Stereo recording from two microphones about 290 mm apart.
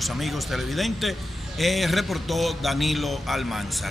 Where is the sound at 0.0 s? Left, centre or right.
Centre.